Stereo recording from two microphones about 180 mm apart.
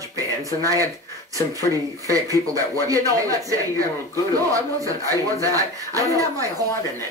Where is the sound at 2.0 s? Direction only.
20° right (ahead or behind).